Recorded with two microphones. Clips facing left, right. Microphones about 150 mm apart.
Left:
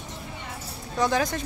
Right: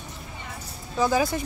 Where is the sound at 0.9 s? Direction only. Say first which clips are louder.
Right 2 dB; 5° right (ahead or behind).